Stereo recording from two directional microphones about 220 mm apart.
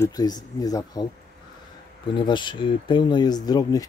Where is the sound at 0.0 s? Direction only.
15° left (ahead or behind).